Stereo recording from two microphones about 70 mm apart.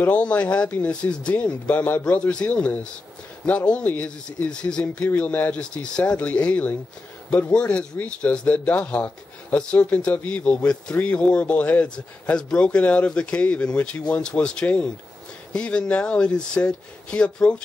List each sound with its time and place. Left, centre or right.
0.0 s speech: centre